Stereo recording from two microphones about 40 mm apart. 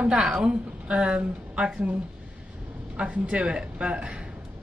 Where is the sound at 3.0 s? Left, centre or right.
Right.